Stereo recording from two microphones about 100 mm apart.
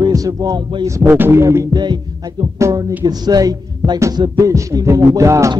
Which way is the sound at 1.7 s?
45° right (ahead or behind).